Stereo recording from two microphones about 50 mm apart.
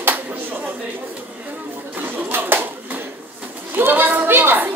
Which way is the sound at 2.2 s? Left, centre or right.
Right.